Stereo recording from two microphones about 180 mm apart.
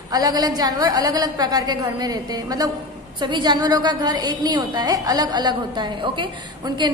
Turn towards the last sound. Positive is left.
turn(degrees=-25)  # may be behind; listen again after turning